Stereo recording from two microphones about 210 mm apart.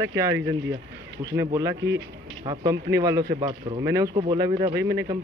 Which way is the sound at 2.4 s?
20° right (ahead or behind).